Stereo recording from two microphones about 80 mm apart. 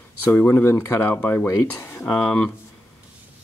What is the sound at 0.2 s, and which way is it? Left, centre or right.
Speech, left.